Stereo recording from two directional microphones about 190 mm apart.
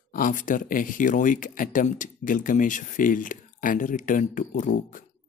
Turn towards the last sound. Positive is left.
turn(degrees=45)  # may be behind; listen again after turning